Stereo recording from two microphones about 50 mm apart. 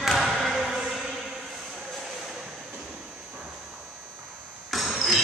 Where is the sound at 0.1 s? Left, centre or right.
Centre.